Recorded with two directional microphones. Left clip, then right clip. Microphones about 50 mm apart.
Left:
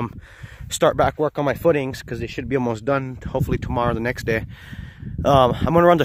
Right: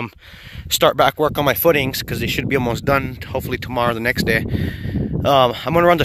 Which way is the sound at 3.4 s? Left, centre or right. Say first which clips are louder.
Right 2 dB; left.